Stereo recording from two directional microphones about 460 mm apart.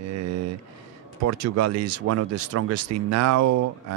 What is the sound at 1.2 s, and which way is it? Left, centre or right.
Speech, right.